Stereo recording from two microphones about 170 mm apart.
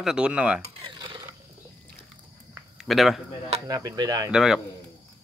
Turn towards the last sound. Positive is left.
turn(degrees=-5)  # may be behind; listen again after turning